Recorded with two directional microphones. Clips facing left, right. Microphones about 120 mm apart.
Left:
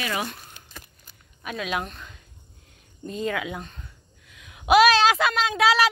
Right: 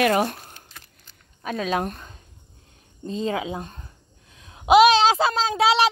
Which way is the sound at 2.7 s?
30° right (ahead or behind).